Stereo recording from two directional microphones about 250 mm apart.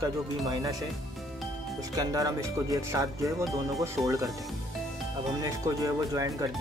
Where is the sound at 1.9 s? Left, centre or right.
Centre.